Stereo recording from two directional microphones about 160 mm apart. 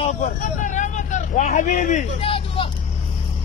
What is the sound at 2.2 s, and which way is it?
Vehicle, 35° left (ahead or behind).